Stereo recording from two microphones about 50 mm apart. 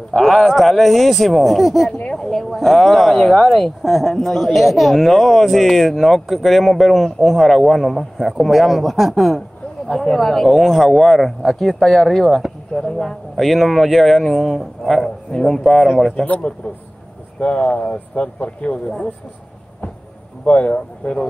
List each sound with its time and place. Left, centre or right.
0.2 s speech: centre
16.3 s speech: left
20.4 s speech: left